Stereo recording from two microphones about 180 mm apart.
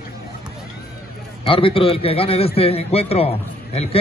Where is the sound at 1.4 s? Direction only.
30° left (ahead or behind).